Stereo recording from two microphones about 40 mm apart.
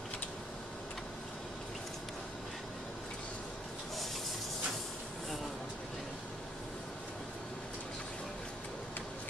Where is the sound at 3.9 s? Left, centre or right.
Centre.